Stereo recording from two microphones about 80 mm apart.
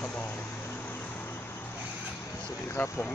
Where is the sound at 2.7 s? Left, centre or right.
Left.